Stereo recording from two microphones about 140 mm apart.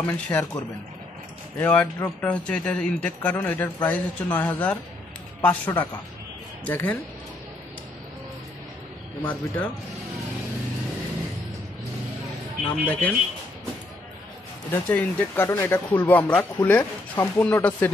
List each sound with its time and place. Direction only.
0.0 s speech: 10° left (ahead or behind)
1.6 s speech: 10° left (ahead or behind)
9.2 s speech: 10° left (ahead or behind)
12.6 s speech: 10° left (ahead or behind)
14.7 s speech: 10° left (ahead or behind)